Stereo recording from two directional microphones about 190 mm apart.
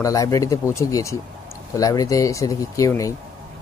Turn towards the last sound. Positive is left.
turn(degrees=15)  # may be behind; listen again after turning